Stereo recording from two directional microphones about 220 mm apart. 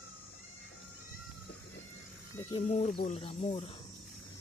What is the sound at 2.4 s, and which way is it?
Speech, 30° left (ahead or behind).